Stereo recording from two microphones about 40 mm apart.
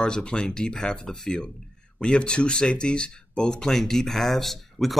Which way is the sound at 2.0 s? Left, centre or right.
Left.